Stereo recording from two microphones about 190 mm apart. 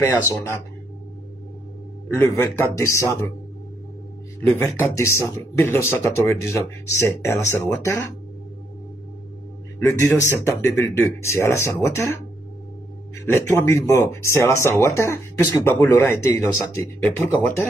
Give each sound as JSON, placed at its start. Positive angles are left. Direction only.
{"t": 0.0, "sound": "speech", "side_deg": 15}
{"t": 2.1, "sound": "speech", "side_deg": 15}
{"t": 4.6, "sound": "speech", "side_deg": 15}
{"t": 9.8, "sound": "speech", "side_deg": 15}
{"t": 13.2, "sound": "speech", "side_deg": 15}